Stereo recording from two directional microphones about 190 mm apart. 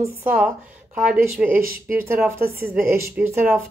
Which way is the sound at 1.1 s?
5° right (ahead or behind).